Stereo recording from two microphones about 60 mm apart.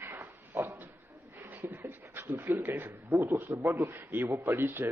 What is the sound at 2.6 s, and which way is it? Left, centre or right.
A man's voice, right.